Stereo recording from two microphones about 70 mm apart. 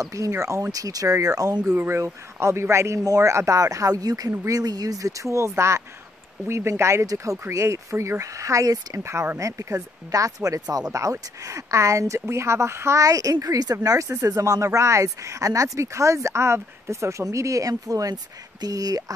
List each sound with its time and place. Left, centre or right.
0.0 s speech: right
1.8 s a man's voice: right
13.0 s speech: right
17.2 s speech: right